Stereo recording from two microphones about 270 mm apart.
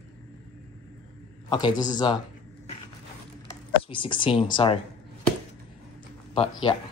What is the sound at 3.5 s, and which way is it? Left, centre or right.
Computer keyboard, centre.